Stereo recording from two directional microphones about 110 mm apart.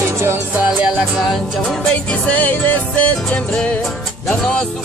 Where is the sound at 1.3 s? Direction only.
5° left (ahead or behind).